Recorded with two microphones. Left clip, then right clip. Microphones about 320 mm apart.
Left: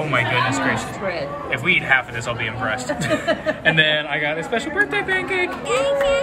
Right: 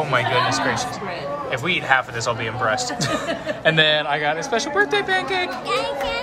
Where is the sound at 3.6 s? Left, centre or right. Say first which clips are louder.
Right 1 dB; right.